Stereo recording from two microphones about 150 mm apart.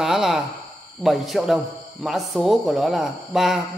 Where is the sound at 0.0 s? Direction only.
Centre (ahead or behind).